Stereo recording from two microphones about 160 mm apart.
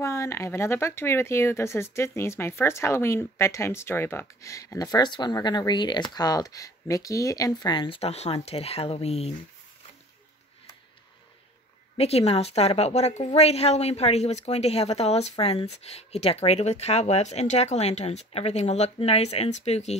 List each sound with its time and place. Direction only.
0.0 s speech: 15° left (ahead or behind); by 9.3 s 40° left (ahead or behind)
12.0 s a woman's voice: 40° left (ahead or behind)